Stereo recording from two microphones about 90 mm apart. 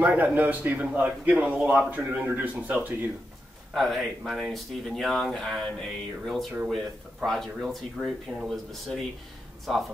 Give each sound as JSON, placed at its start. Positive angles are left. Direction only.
{"t": 0.0, "sound": "a man's voice", "side_deg": -20}
{"t": 3.7, "sound": "speech", "side_deg": 0}